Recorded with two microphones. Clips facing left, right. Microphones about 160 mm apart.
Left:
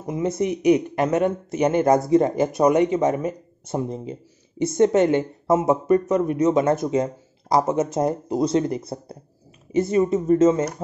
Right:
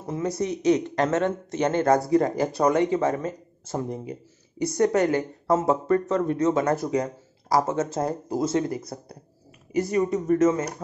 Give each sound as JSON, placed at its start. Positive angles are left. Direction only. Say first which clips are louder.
{"t": 0.0, "sound": "speech", "louder": "left 4 dB", "side_deg": 20}